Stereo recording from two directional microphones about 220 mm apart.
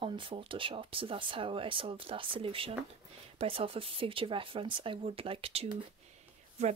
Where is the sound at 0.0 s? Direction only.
25° right (ahead or behind).